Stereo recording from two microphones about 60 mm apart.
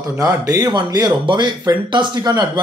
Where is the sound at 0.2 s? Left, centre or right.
Right.